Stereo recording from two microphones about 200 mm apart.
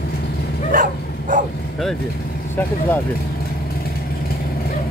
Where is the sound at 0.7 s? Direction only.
40° right (ahead or behind).